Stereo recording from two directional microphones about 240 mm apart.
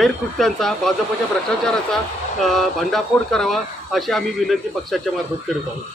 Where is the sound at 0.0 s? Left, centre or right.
Centre.